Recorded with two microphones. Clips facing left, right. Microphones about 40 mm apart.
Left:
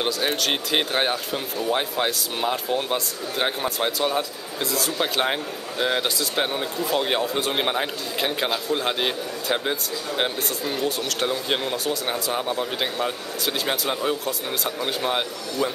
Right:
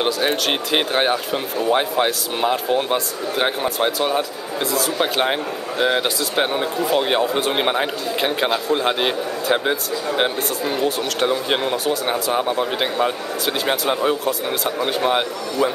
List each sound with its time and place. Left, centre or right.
0.0 s speech: centre